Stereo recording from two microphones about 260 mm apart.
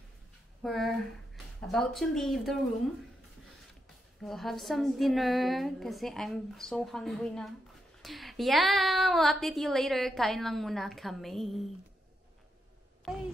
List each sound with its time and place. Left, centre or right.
0.6 s speech: centre
4.2 s a woman's voice: centre